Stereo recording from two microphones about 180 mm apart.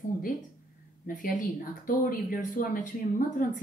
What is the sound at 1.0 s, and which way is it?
Speech, 50° left (ahead or behind).